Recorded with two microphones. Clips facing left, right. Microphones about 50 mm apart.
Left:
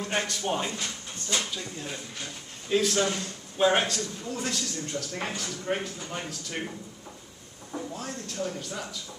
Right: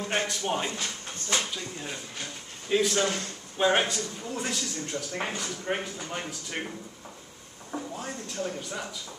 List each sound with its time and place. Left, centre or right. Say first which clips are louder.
0.0 s a man's voice: even; centre
1.3 s speech: right 1 dB; centre
2.7 s a man's voice: even; centre
7.7 s a man's voice: even; centre